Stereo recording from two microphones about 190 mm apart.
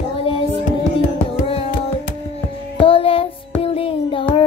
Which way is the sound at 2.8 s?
30° left (ahead or behind).